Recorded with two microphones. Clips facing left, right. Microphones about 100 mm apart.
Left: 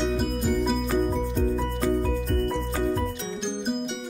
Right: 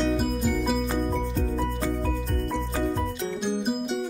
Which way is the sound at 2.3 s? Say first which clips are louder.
Left 3 dB; centre (ahead or behind).